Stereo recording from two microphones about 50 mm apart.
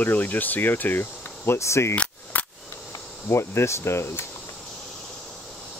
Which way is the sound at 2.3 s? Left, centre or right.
Left.